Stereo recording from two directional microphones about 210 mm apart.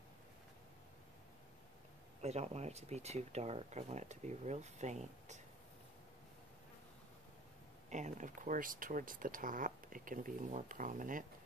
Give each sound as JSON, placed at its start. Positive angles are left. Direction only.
{"t": 2.2, "sound": "speech", "side_deg": -30}
{"t": 7.9, "sound": "speech", "side_deg": -35}